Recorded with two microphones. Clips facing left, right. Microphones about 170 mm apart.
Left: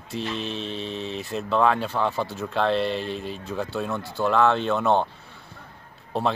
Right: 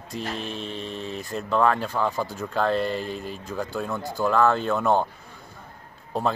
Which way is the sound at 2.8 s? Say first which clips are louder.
Left 1 dB; 90° left.